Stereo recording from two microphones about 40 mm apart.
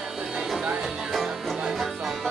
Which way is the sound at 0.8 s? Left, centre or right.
Centre.